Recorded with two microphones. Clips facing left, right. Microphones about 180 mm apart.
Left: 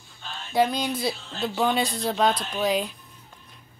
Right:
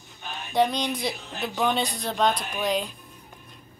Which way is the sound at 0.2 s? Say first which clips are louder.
Right 1 dB; 15° right (ahead or behind).